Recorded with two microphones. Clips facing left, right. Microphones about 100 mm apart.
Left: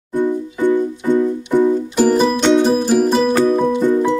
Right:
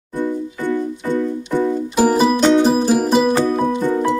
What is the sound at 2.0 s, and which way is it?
Music, 10° right (ahead or behind).